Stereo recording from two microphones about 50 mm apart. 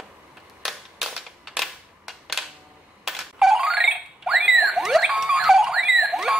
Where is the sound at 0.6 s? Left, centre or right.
Centre.